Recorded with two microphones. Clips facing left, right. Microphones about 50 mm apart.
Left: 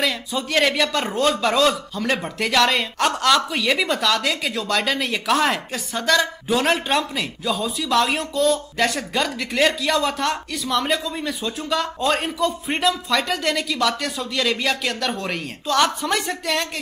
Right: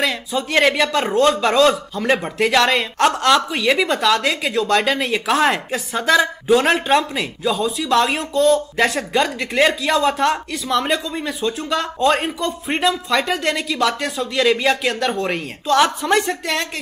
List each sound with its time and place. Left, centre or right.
0.0 s speech: centre